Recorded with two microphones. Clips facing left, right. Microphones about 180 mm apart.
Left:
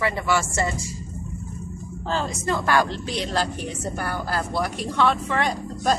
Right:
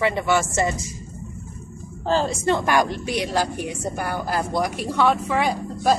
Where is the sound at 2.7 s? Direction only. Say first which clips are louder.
Right 1 dB; 15° right (ahead or behind).